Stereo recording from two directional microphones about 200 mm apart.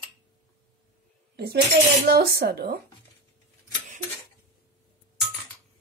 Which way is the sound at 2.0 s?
55° right (ahead or behind).